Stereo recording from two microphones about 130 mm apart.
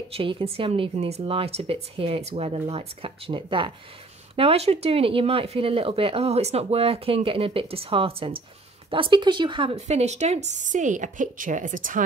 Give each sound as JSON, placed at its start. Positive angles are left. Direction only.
{"t": 0.1, "sound": "speech", "side_deg": -45}
{"t": 9.8, "sound": "speech", "side_deg": -60}